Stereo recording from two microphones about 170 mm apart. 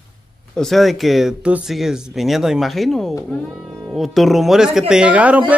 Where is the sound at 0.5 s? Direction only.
Centre (ahead or behind).